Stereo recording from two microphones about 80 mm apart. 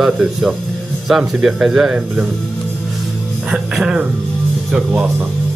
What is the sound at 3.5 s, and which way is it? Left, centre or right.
Speech, centre.